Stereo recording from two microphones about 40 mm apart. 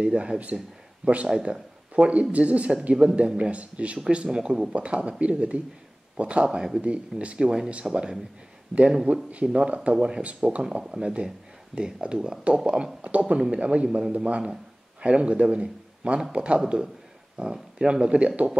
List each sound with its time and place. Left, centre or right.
0.0 s a man's voice: right
2.3 s speech: right
4.3 s a man's voice: right
13.1 s a man's voice: right
13.8 s a man's voice: centre
14.1 s a man's voice: right